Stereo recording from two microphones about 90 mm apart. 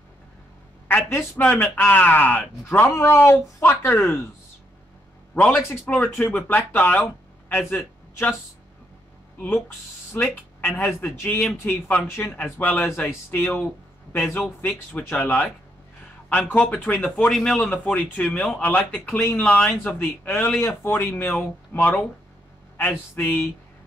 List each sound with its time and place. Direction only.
1.4 s speech: 15° left (ahead or behind)
5.3 s a man's voice: 15° left (ahead or behind)
6.1 s speech: 25° left (ahead or behind)
10.1 s a man's voice: 20° left (ahead or behind)
17.3 s a man's voice: 5° left (ahead or behind); by 19.4 s 25° left (ahead or behind)
19.4 s a man's voice: 10° left (ahead or behind)